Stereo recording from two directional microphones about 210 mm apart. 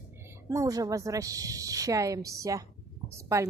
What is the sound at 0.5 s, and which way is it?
A woman's voice, 15° right (ahead or behind).